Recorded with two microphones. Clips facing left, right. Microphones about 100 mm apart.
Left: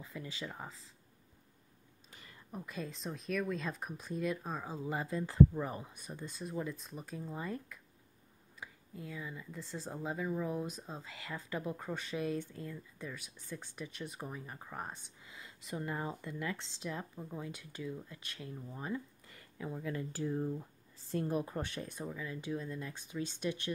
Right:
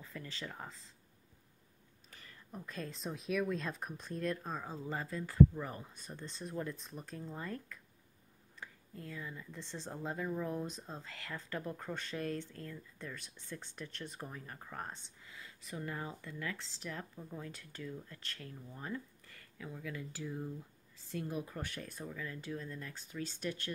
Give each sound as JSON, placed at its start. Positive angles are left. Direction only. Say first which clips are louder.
{"t": 0.0, "sound": "speech", "louder": "left 2 dB", "side_deg": 15}
{"t": 2.0, "sound": "speech", "louder": "left 2 dB", "side_deg": 20}